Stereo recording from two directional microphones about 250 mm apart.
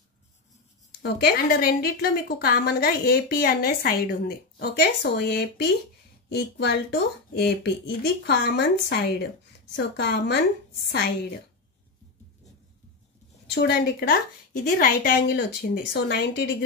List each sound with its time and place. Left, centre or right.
1.0 s a woman's voice: left
13.6 s a woman's voice: left